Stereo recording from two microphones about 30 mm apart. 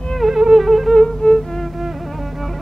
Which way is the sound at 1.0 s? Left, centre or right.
Left.